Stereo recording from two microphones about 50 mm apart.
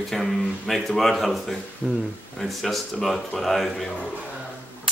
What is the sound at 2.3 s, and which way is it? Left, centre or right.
Speech, centre.